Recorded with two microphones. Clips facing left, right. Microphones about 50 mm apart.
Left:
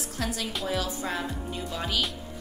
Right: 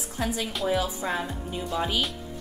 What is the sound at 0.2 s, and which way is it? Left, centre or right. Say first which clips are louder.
A woman's voice: right 3 dB; centre.